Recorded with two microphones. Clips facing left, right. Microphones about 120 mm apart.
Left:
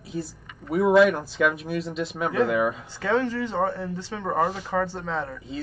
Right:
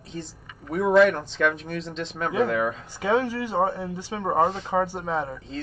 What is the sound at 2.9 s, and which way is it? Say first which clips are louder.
Speech: right 2 dB; 15° right (ahead or behind).